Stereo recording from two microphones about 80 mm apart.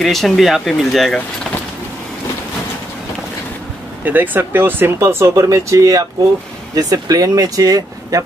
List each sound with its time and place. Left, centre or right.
0.0 s speech: centre
4.0 s speech: right